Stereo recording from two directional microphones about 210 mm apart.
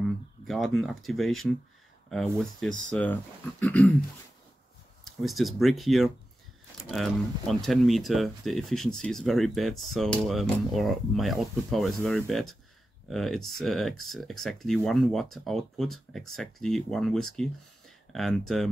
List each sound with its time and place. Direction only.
0.5 s speech: centre (ahead or behind)
5.2 s speech: centre (ahead or behind)